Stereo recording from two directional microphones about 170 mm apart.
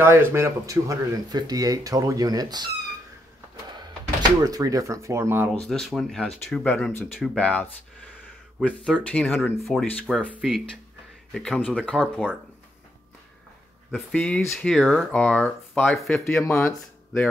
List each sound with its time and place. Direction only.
0.0 s speech: 15° right (ahead or behind)
4.4 s speech: 20° right (ahead or behind)
5.5 s speech: centre (ahead or behind)
13.9 s speech: 5° left (ahead or behind)
16.6 s speech: 15° left (ahead or behind)